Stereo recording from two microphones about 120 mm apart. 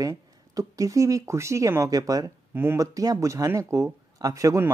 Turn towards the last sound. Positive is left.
turn(degrees=-25)  # may be behind; listen again after turning